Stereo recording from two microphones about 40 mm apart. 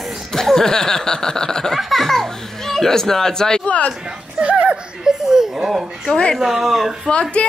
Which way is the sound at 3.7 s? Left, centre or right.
Left.